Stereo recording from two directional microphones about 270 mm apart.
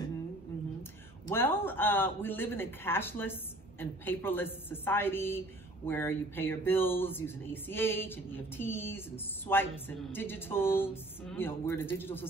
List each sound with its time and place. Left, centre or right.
1.2 s speech: centre